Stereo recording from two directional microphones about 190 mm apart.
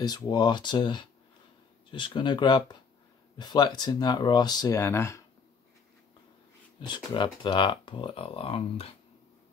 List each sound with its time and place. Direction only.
0.0 s speech: 20° left (ahead or behind)
7.0 s speech: 25° left (ahead or behind)